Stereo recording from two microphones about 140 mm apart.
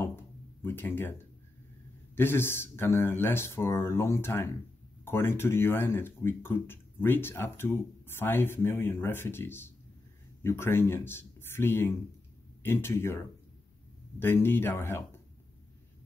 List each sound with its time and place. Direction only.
0.0 s a sound: 15° left (ahead or behind)
2.1 s speech: 15° left (ahead or behind)
14.2 s speech: 15° left (ahead or behind)